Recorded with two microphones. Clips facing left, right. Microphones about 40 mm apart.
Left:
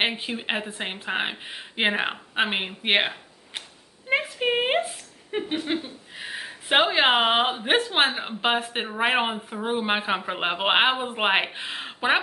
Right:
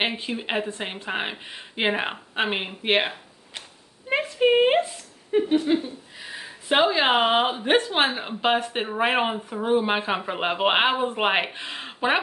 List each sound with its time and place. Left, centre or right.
0.0 s speech: centre
4.1 s a sound: centre
5.3 s a woman's voice: left